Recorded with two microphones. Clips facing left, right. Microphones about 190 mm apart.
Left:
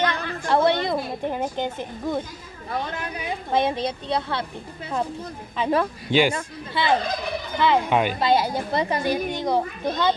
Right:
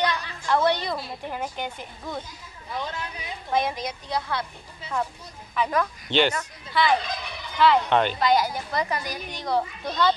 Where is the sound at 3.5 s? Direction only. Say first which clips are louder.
Left 3 dB; 25° left (ahead or behind).